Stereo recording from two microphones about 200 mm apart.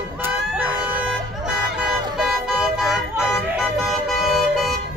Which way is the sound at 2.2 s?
Centre (ahead or behind).